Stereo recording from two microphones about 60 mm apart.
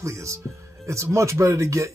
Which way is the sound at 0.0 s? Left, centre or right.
Right.